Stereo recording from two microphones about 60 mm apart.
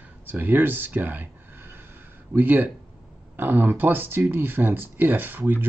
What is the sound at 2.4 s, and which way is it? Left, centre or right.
Speech, right.